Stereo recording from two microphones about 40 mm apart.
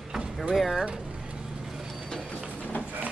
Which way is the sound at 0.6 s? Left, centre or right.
Centre.